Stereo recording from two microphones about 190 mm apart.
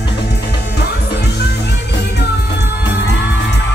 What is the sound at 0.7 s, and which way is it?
Music, 60° left (ahead or behind).